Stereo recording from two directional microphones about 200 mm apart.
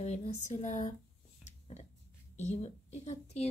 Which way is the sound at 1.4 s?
35° left (ahead or behind).